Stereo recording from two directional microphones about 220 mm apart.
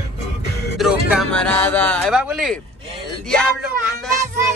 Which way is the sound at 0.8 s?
Centre (ahead or behind).